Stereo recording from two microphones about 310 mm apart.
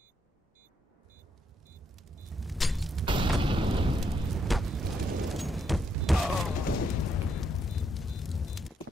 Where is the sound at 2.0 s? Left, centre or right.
Centre.